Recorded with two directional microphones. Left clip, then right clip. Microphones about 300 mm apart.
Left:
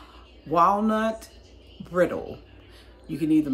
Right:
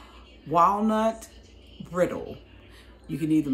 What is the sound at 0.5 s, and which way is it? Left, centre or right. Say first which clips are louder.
Speech: left 1 dB; centre.